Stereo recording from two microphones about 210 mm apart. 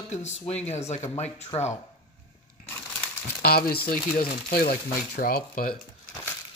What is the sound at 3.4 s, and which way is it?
Speech, 45° left (ahead or behind).